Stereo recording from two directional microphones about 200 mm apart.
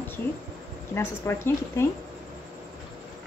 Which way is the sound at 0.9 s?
15° left (ahead or behind).